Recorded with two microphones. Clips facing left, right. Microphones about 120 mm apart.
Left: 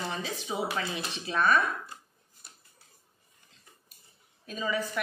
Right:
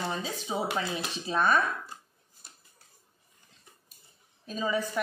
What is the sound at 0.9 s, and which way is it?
Dishes, 30° right (ahead or behind).